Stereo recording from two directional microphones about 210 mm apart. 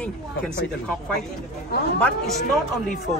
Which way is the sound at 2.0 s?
5° left (ahead or behind).